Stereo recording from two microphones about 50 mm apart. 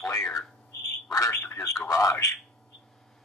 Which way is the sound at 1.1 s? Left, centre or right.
Left.